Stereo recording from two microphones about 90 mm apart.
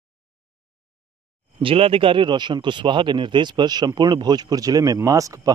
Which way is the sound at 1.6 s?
90° right.